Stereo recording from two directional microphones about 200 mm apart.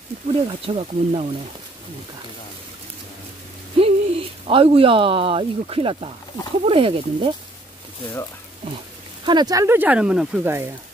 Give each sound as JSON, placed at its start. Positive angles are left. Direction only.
{"t": 0.5, "sound": "speech", "side_deg": -30}
{"t": 3.7, "sound": "speech", "side_deg": -30}
{"t": 9.2, "sound": "speech", "side_deg": -20}